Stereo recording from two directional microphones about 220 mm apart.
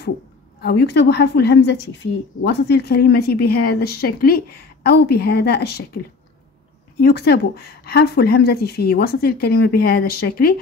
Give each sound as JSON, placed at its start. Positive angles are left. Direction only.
{"t": 0.6, "sound": "speech", "side_deg": 50}
{"t": 7.0, "sound": "speech", "side_deg": 45}